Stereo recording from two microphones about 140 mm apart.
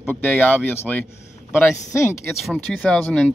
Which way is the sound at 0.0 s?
15° left (ahead or behind).